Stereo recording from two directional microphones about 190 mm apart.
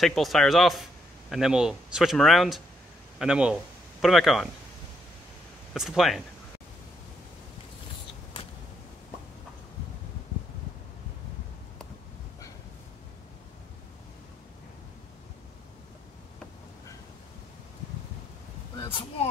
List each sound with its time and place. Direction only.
0.0 s speech: centre (ahead or behind)
5.7 s speech: centre (ahead or behind)
18.8 s a sound: 25° left (ahead or behind)